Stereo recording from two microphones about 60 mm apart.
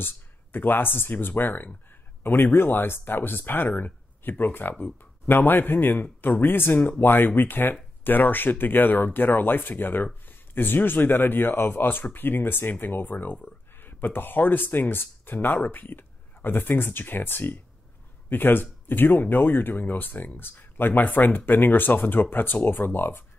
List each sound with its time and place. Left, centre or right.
0.0 s a man's voice: left